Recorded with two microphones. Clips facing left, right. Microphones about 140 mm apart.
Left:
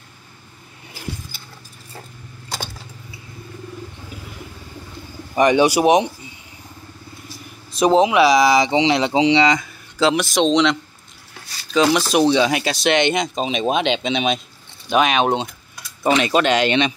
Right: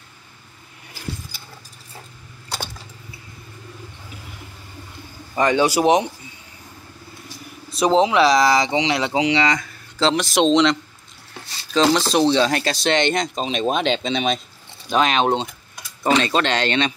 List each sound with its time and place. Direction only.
5.3 s speech: 15° left (ahead or behind)
7.8 s speech: 15° left (ahead or behind)
9.9 s speech: 10° left (ahead or behind)
10.3 s speech: 5° right (ahead or behind); by 16.9 s 15° left (ahead or behind)